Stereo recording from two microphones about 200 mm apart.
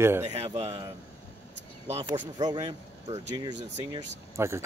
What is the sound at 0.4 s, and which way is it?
Speech, 30° right (ahead or behind).